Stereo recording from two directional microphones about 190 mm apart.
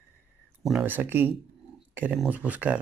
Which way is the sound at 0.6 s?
5° right (ahead or behind).